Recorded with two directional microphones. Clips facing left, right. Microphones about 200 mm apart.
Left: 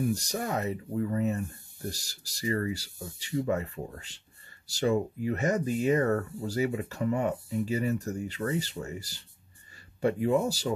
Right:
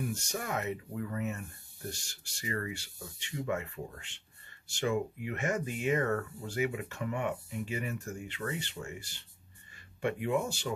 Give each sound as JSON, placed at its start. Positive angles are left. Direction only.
{"t": 0.0, "sound": "speech", "side_deg": 35}